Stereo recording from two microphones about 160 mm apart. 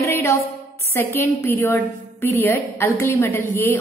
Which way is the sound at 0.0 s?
15° left (ahead or behind).